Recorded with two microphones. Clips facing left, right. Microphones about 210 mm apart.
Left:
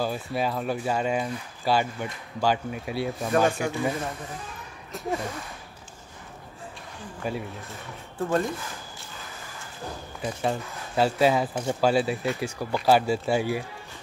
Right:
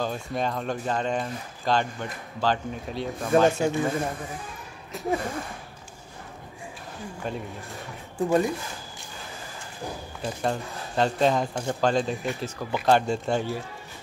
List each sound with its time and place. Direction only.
0.0 s speech: 5° left (ahead or behind)
3.4 s speech: 20° right (ahead or behind)
4.9 s speech: centre (ahead or behind)
7.2 s speech: 5° left (ahead or behind)
8.2 s speech: 15° right (ahead or behind)
10.2 s speech: 5° left (ahead or behind)